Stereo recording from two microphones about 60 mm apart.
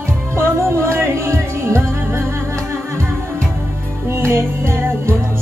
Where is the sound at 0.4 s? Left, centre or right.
Right.